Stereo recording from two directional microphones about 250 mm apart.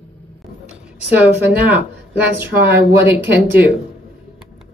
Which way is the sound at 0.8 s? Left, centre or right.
Centre.